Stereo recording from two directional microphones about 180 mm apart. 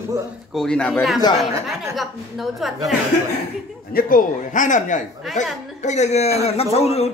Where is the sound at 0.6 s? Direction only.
5° left (ahead or behind).